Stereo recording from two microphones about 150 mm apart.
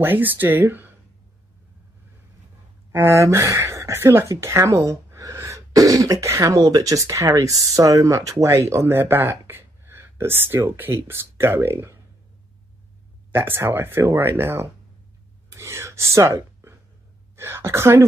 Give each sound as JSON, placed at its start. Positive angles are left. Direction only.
{"t": 0.0, "sound": "speech", "side_deg": -10}
{"t": 2.9, "sound": "speech", "side_deg": -20}
{"t": 13.3, "sound": "speech", "side_deg": -15}